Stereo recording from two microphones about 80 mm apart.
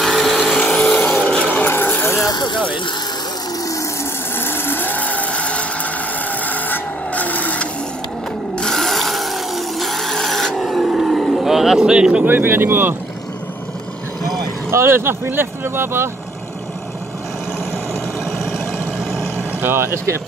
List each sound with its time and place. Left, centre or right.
0.0 s vehicle: centre
0.6 s vehicle: centre
1.7 s vehicle: left
3.6 s vehicle: left
4.4 s vehicle: left
8.5 s a sound: centre
12.3 s speech: right
14.7 s speech: right
19.6 s speech: right